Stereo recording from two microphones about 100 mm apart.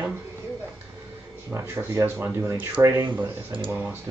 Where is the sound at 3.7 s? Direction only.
20° right (ahead or behind).